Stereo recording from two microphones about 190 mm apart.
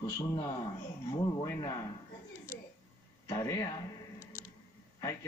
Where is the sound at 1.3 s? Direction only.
20° left (ahead or behind).